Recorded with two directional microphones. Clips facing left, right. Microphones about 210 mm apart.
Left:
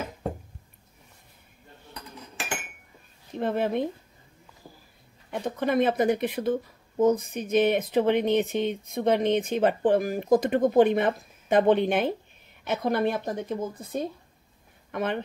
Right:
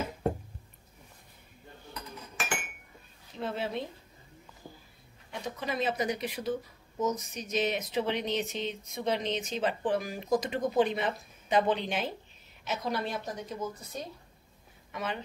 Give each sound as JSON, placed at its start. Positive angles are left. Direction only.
{"t": 3.3, "sound": "speech", "side_deg": 55}
{"t": 5.3, "sound": "speech", "side_deg": 55}